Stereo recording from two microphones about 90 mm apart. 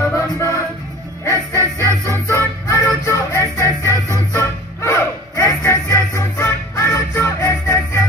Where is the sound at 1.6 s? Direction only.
35° right (ahead or behind).